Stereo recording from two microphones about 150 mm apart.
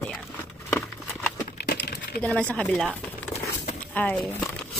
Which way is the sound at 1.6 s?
90° left.